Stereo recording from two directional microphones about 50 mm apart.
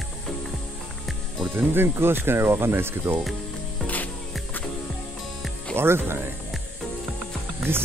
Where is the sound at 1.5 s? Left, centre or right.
Right.